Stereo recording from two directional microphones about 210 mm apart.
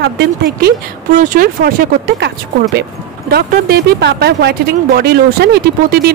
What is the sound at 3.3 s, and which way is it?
Speech, 50° right (ahead or behind).